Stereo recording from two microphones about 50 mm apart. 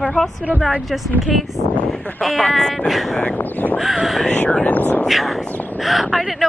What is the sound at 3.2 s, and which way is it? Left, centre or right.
Speech, left.